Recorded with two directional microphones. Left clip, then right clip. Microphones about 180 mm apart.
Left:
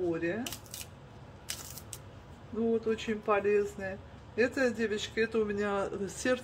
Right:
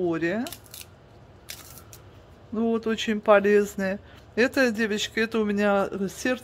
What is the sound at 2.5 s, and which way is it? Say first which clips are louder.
Speech: right 4 dB; 60° right (ahead or behind).